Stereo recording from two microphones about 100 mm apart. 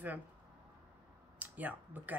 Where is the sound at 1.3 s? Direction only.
15° right (ahead or behind).